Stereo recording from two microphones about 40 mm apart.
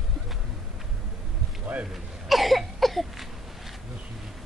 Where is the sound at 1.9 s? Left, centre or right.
Centre.